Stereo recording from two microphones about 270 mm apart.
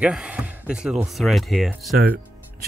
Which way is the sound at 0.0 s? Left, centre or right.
Centre.